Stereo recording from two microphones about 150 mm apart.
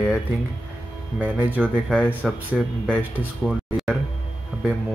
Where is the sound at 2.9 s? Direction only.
10° right (ahead or behind).